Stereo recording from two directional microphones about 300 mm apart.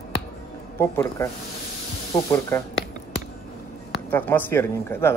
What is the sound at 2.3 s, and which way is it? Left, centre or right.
Speech, centre.